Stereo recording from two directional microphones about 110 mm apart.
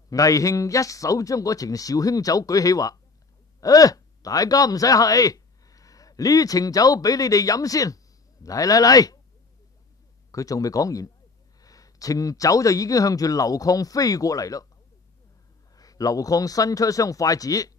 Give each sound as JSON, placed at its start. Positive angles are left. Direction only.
{"t": 0.1, "sound": "speech", "side_deg": 30}
{"t": 10.3, "sound": "speech", "side_deg": 30}
{"t": 15.7, "sound": "speech", "side_deg": 35}